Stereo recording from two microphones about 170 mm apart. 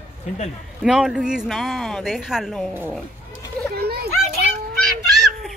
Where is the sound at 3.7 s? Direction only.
65° right (ahead or behind).